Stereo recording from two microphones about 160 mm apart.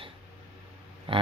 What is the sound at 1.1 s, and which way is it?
Speech, 35° right (ahead or behind).